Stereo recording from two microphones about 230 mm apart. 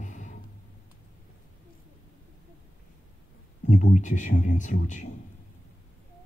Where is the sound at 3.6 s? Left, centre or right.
Left.